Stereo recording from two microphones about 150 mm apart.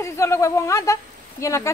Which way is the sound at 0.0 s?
20° left (ahead or behind).